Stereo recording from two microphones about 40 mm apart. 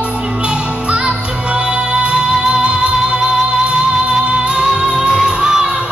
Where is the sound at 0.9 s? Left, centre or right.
Right.